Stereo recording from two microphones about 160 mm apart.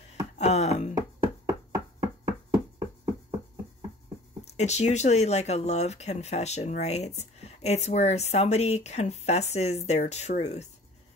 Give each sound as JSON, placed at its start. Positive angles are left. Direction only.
{"t": 0.4, "sound": "speech", "side_deg": 45}
{"t": 0.9, "sound": "chopping", "side_deg": -20}
{"t": 4.5, "sound": "speech", "side_deg": 45}